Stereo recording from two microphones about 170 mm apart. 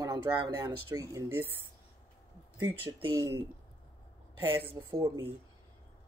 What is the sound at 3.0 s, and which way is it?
Speech, 25° right (ahead or behind).